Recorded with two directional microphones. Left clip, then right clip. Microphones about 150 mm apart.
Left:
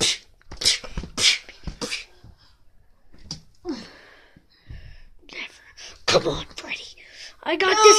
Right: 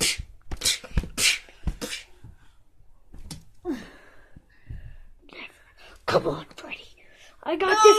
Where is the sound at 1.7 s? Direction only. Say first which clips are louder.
Left 5 dB; 55° left (ahead or behind).